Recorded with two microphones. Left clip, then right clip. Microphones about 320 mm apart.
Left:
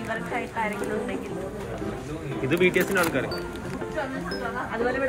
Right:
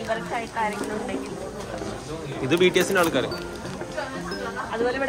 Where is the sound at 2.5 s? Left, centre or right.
Centre.